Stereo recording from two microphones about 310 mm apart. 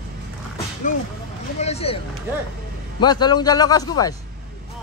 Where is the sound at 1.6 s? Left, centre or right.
Centre.